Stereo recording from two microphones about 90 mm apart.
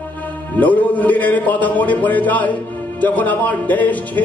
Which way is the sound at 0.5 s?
20° left (ahead or behind).